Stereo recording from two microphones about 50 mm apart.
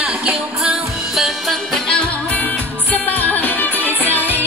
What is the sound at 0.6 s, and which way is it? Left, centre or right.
Music, centre.